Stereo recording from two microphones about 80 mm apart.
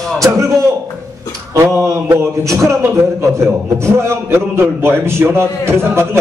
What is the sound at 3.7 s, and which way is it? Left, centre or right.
A man's voice, right.